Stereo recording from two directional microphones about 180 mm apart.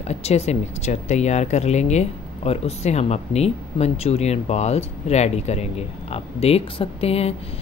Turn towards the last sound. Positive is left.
turn(degrees=35)  # may be behind; listen again after turning